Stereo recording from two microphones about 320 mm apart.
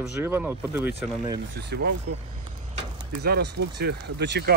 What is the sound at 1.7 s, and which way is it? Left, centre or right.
Speech, right.